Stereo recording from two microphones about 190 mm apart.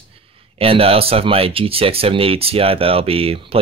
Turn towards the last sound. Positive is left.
turn(degrees=-30)  # may be behind; listen again after turning